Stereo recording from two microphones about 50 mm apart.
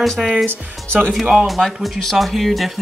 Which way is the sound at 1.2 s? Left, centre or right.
Centre.